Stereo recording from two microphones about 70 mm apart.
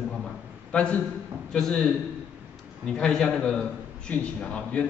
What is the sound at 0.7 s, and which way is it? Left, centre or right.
A man's voice, centre.